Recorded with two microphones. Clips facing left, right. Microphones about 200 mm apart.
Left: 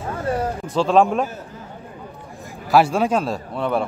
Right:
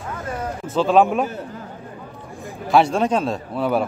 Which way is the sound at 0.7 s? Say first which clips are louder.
Right 1 dB; centre (ahead or behind).